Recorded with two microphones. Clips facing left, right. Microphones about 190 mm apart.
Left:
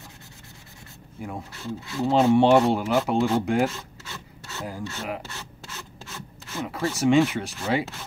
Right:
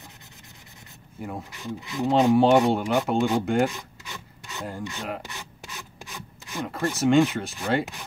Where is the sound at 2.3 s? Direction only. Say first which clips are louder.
Left 1 dB; centre (ahead or behind).